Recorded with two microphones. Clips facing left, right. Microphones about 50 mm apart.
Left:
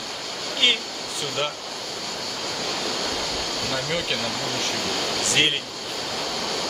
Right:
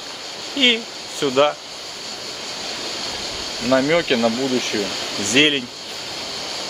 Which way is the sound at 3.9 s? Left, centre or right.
Right.